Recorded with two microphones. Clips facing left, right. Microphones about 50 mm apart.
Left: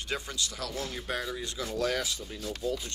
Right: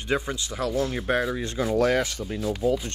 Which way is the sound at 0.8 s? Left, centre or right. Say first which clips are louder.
Right 8 dB; right.